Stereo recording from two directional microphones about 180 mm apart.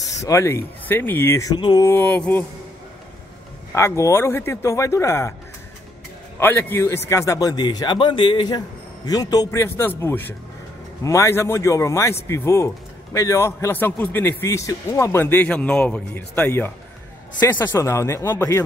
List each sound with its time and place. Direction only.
0.2 s a man's voice: 15° left (ahead or behind)
3.7 s a man's voice: 15° left (ahead or behind)
6.4 s a man's voice: 10° left (ahead or behind)